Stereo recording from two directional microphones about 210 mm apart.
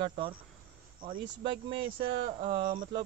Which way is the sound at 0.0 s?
25° right (ahead or behind).